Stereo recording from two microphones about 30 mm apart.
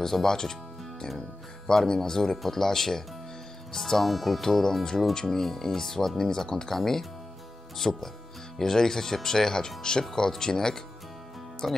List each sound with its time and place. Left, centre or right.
0.0 s speech: centre
1.7 s speech: centre
4.4 s speech: centre
5.4 s speech: centre